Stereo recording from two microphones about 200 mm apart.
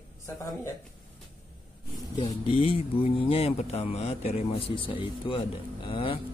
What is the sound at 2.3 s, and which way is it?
Speech, 25° left (ahead or behind).